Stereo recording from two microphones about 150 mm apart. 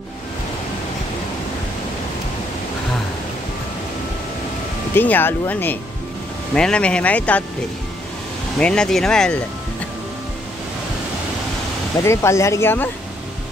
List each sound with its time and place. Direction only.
4.9 s speech: 15° left (ahead or behind)
8.5 s speech: 5° left (ahead or behind)
12.0 s speech: 20° left (ahead or behind)